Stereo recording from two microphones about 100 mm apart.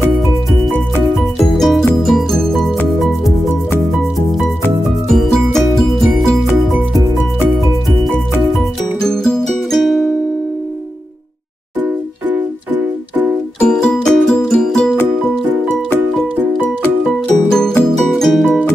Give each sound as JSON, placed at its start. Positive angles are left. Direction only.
{"t": 1.0, "sound": "music", "side_deg": 0}
{"t": 5.1, "sound": "music", "side_deg": 5}
{"t": 9.0, "sound": "music", "side_deg": 5}
{"t": 11.8, "sound": "music", "side_deg": -15}
{"t": 13.6, "sound": "music", "side_deg": 10}
{"t": 17.5, "sound": "music", "side_deg": 5}